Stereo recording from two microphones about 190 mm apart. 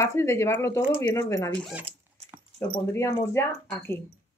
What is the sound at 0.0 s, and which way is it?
Speech, 15° left (ahead or behind).